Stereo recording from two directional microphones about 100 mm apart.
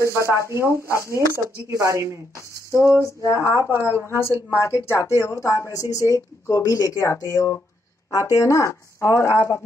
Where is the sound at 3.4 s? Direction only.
25° right (ahead or behind).